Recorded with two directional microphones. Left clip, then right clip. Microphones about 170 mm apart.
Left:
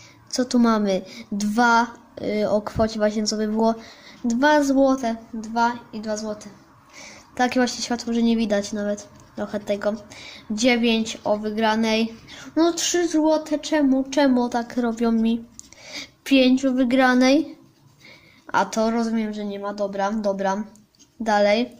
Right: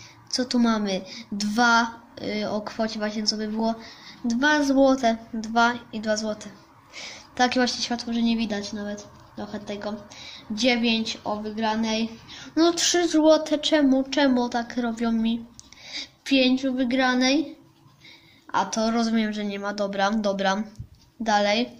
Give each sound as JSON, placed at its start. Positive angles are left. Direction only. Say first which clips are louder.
{"t": 0.3, "sound": "a woman's voice", "louder": "left 3 dB", "side_deg": 20}
{"t": 4.7, "sound": "a woman's voice", "louder": "even", "side_deg": 0}
{"t": 7.3, "sound": "a woman's voice", "louder": "left 1 dB", "side_deg": 10}
{"t": 13.8, "sound": "a woman's voice", "louder": "left 2 dB", "side_deg": 10}
{"t": 18.5, "sound": "a woman's voice", "louder": "left 3 dB", "side_deg": 20}
{"t": 21.2, "sound": "a woman's voice", "louder": "left 3 dB", "side_deg": 15}